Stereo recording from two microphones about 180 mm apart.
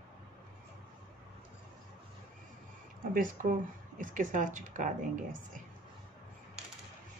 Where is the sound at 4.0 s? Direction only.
45° right (ahead or behind).